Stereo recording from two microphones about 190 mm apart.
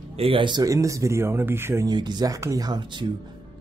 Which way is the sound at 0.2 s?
25° right (ahead or behind).